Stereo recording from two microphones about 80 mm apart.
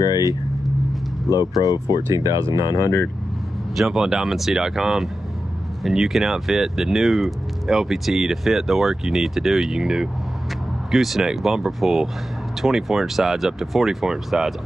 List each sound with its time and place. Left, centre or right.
0.0 s vehicle: left
1.6 s speech: left
2.1 s speech: right
2.8 s speech: left
3.7 s speech: centre